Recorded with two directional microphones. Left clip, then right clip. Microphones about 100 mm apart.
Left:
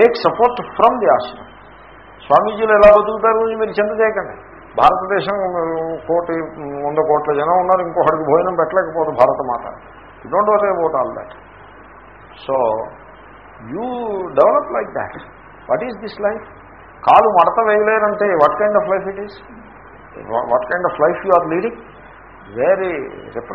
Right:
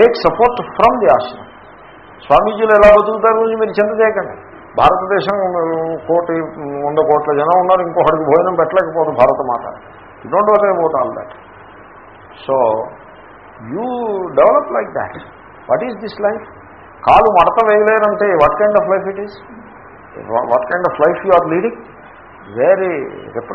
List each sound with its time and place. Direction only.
0.0 s a man's voice: 30° left (ahead or behind)
3.8 s a man's voice: 45° left (ahead or behind)
4.7 s a man's voice: 30° left (ahead or behind)
5.5 s a man's voice: 40° left (ahead or behind)
12.4 s a man's voice: 30° left (ahead or behind)
13.7 s a man's voice: 30° left (ahead or behind)
17.5 s a man's voice: 30° left (ahead or behind)
20.2 s a man's voice: 30° left (ahead or behind)
22.7 s a man's voice: 25° left (ahead or behind)